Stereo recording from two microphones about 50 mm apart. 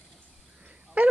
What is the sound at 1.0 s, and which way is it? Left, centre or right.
Speech, right.